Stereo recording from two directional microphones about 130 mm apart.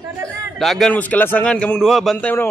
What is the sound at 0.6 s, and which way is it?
A man's voice, centre (ahead or behind).